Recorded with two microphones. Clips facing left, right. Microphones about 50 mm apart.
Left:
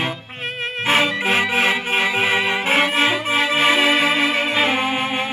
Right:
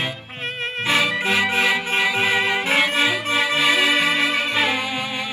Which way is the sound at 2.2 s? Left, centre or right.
Left.